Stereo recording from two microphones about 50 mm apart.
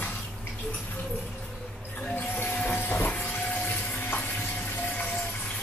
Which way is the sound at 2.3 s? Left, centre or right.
Left.